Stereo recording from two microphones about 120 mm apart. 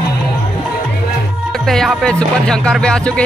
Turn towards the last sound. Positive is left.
turn(degrees=10)  # may be behind; listen again after turning